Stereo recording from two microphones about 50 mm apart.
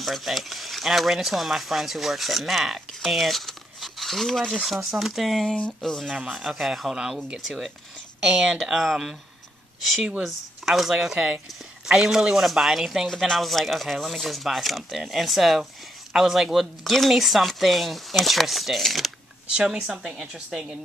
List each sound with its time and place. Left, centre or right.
0.0 s speech: centre
4.6 s speech: centre
6.0 s speech: centre
6.3 s speech: centre
10.2 s speech: centre
19.5 s speech: centre